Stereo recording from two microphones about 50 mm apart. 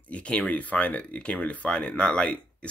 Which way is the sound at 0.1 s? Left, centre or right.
Left.